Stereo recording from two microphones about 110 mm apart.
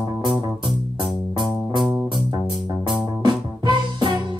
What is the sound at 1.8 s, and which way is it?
Music, centre (ahead or behind).